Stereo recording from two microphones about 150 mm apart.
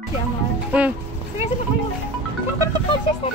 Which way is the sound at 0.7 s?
10° right (ahead or behind).